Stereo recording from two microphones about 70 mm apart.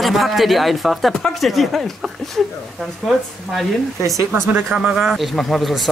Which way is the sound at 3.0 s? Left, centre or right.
Centre.